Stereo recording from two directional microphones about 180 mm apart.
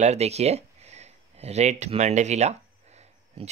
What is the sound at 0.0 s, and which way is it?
Speech, 35° right (ahead or behind).